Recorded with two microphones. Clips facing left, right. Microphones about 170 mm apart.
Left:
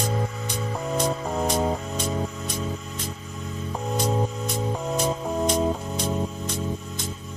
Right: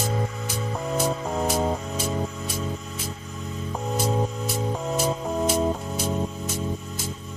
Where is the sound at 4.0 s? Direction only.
Centre (ahead or behind).